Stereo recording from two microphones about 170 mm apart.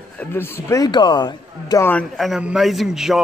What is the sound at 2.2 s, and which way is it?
Speech, 5° right (ahead or behind).